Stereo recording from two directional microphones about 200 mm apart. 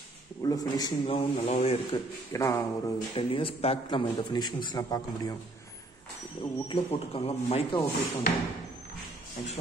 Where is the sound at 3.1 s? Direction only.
25° left (ahead or behind).